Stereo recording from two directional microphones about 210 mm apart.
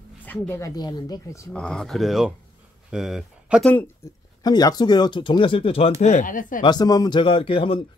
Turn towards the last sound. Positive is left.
turn(degrees=25)  # may be behind; listen again after turning